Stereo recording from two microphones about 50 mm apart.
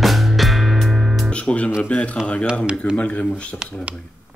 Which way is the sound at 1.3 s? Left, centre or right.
Left.